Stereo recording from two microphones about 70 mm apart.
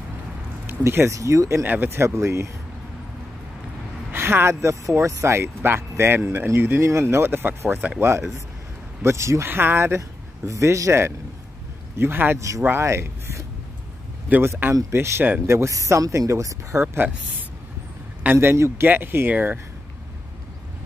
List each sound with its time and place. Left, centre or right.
0.7 s speech: right
1.6 s speech: right
4.1 s speech: right
9.5 s speech: right
9.9 s speech: right
12.4 s speech: right
14.4 s speech: right
16.8 s speech: right
18.2 s speech: right